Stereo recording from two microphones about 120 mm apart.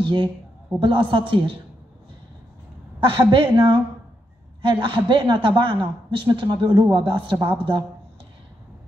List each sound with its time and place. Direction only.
0.0 s a woman's voice: 45° right (ahead or behind)
3.0 s a woman's voice: 45° right (ahead or behind)